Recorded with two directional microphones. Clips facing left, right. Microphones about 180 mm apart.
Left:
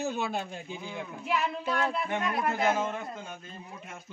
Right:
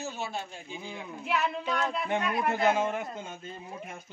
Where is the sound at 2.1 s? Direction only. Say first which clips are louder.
Right 1 dB; 20° right (ahead or behind).